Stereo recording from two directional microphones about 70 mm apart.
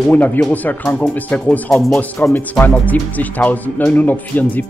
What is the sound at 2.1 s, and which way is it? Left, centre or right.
Speech, left.